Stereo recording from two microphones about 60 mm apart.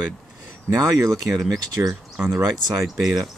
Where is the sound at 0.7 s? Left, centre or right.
Right.